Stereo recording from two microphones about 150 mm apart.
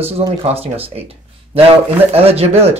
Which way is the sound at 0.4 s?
40° right (ahead or behind).